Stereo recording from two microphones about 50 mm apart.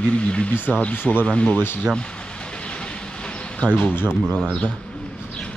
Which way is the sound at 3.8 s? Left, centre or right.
Left.